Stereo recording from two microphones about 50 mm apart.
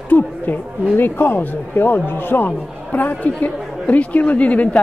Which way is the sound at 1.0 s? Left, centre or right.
Left.